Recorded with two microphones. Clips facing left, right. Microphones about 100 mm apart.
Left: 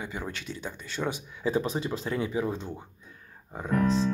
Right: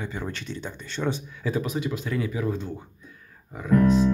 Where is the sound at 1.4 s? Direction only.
25° left (ahead or behind).